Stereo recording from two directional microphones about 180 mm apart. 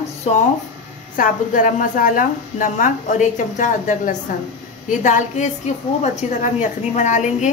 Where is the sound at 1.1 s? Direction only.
50° left (ahead or behind).